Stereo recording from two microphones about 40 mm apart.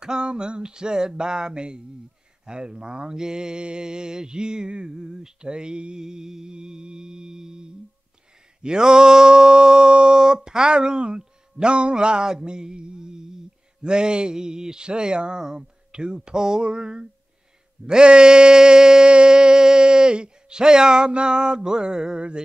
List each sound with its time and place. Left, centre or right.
0.0 s mantra: right